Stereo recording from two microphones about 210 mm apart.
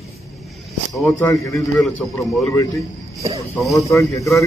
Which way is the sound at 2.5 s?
15° left (ahead or behind).